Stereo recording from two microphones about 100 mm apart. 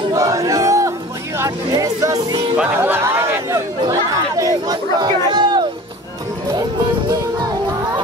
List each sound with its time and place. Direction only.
0.1 s a sound: 35° right (ahead or behind)
1.7 s music: 35° right (ahead or behind)
2.5 s music: 20° right (ahead or behind)
3.9 s chatter: 35° right (ahead or behind)